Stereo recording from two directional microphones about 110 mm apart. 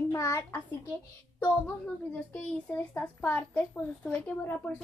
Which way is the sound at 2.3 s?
15° left (ahead or behind).